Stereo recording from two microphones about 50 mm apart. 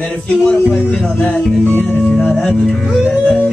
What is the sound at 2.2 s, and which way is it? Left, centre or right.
Speech, centre.